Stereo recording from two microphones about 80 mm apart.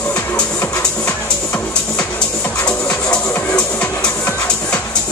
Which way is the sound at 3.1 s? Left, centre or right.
Centre.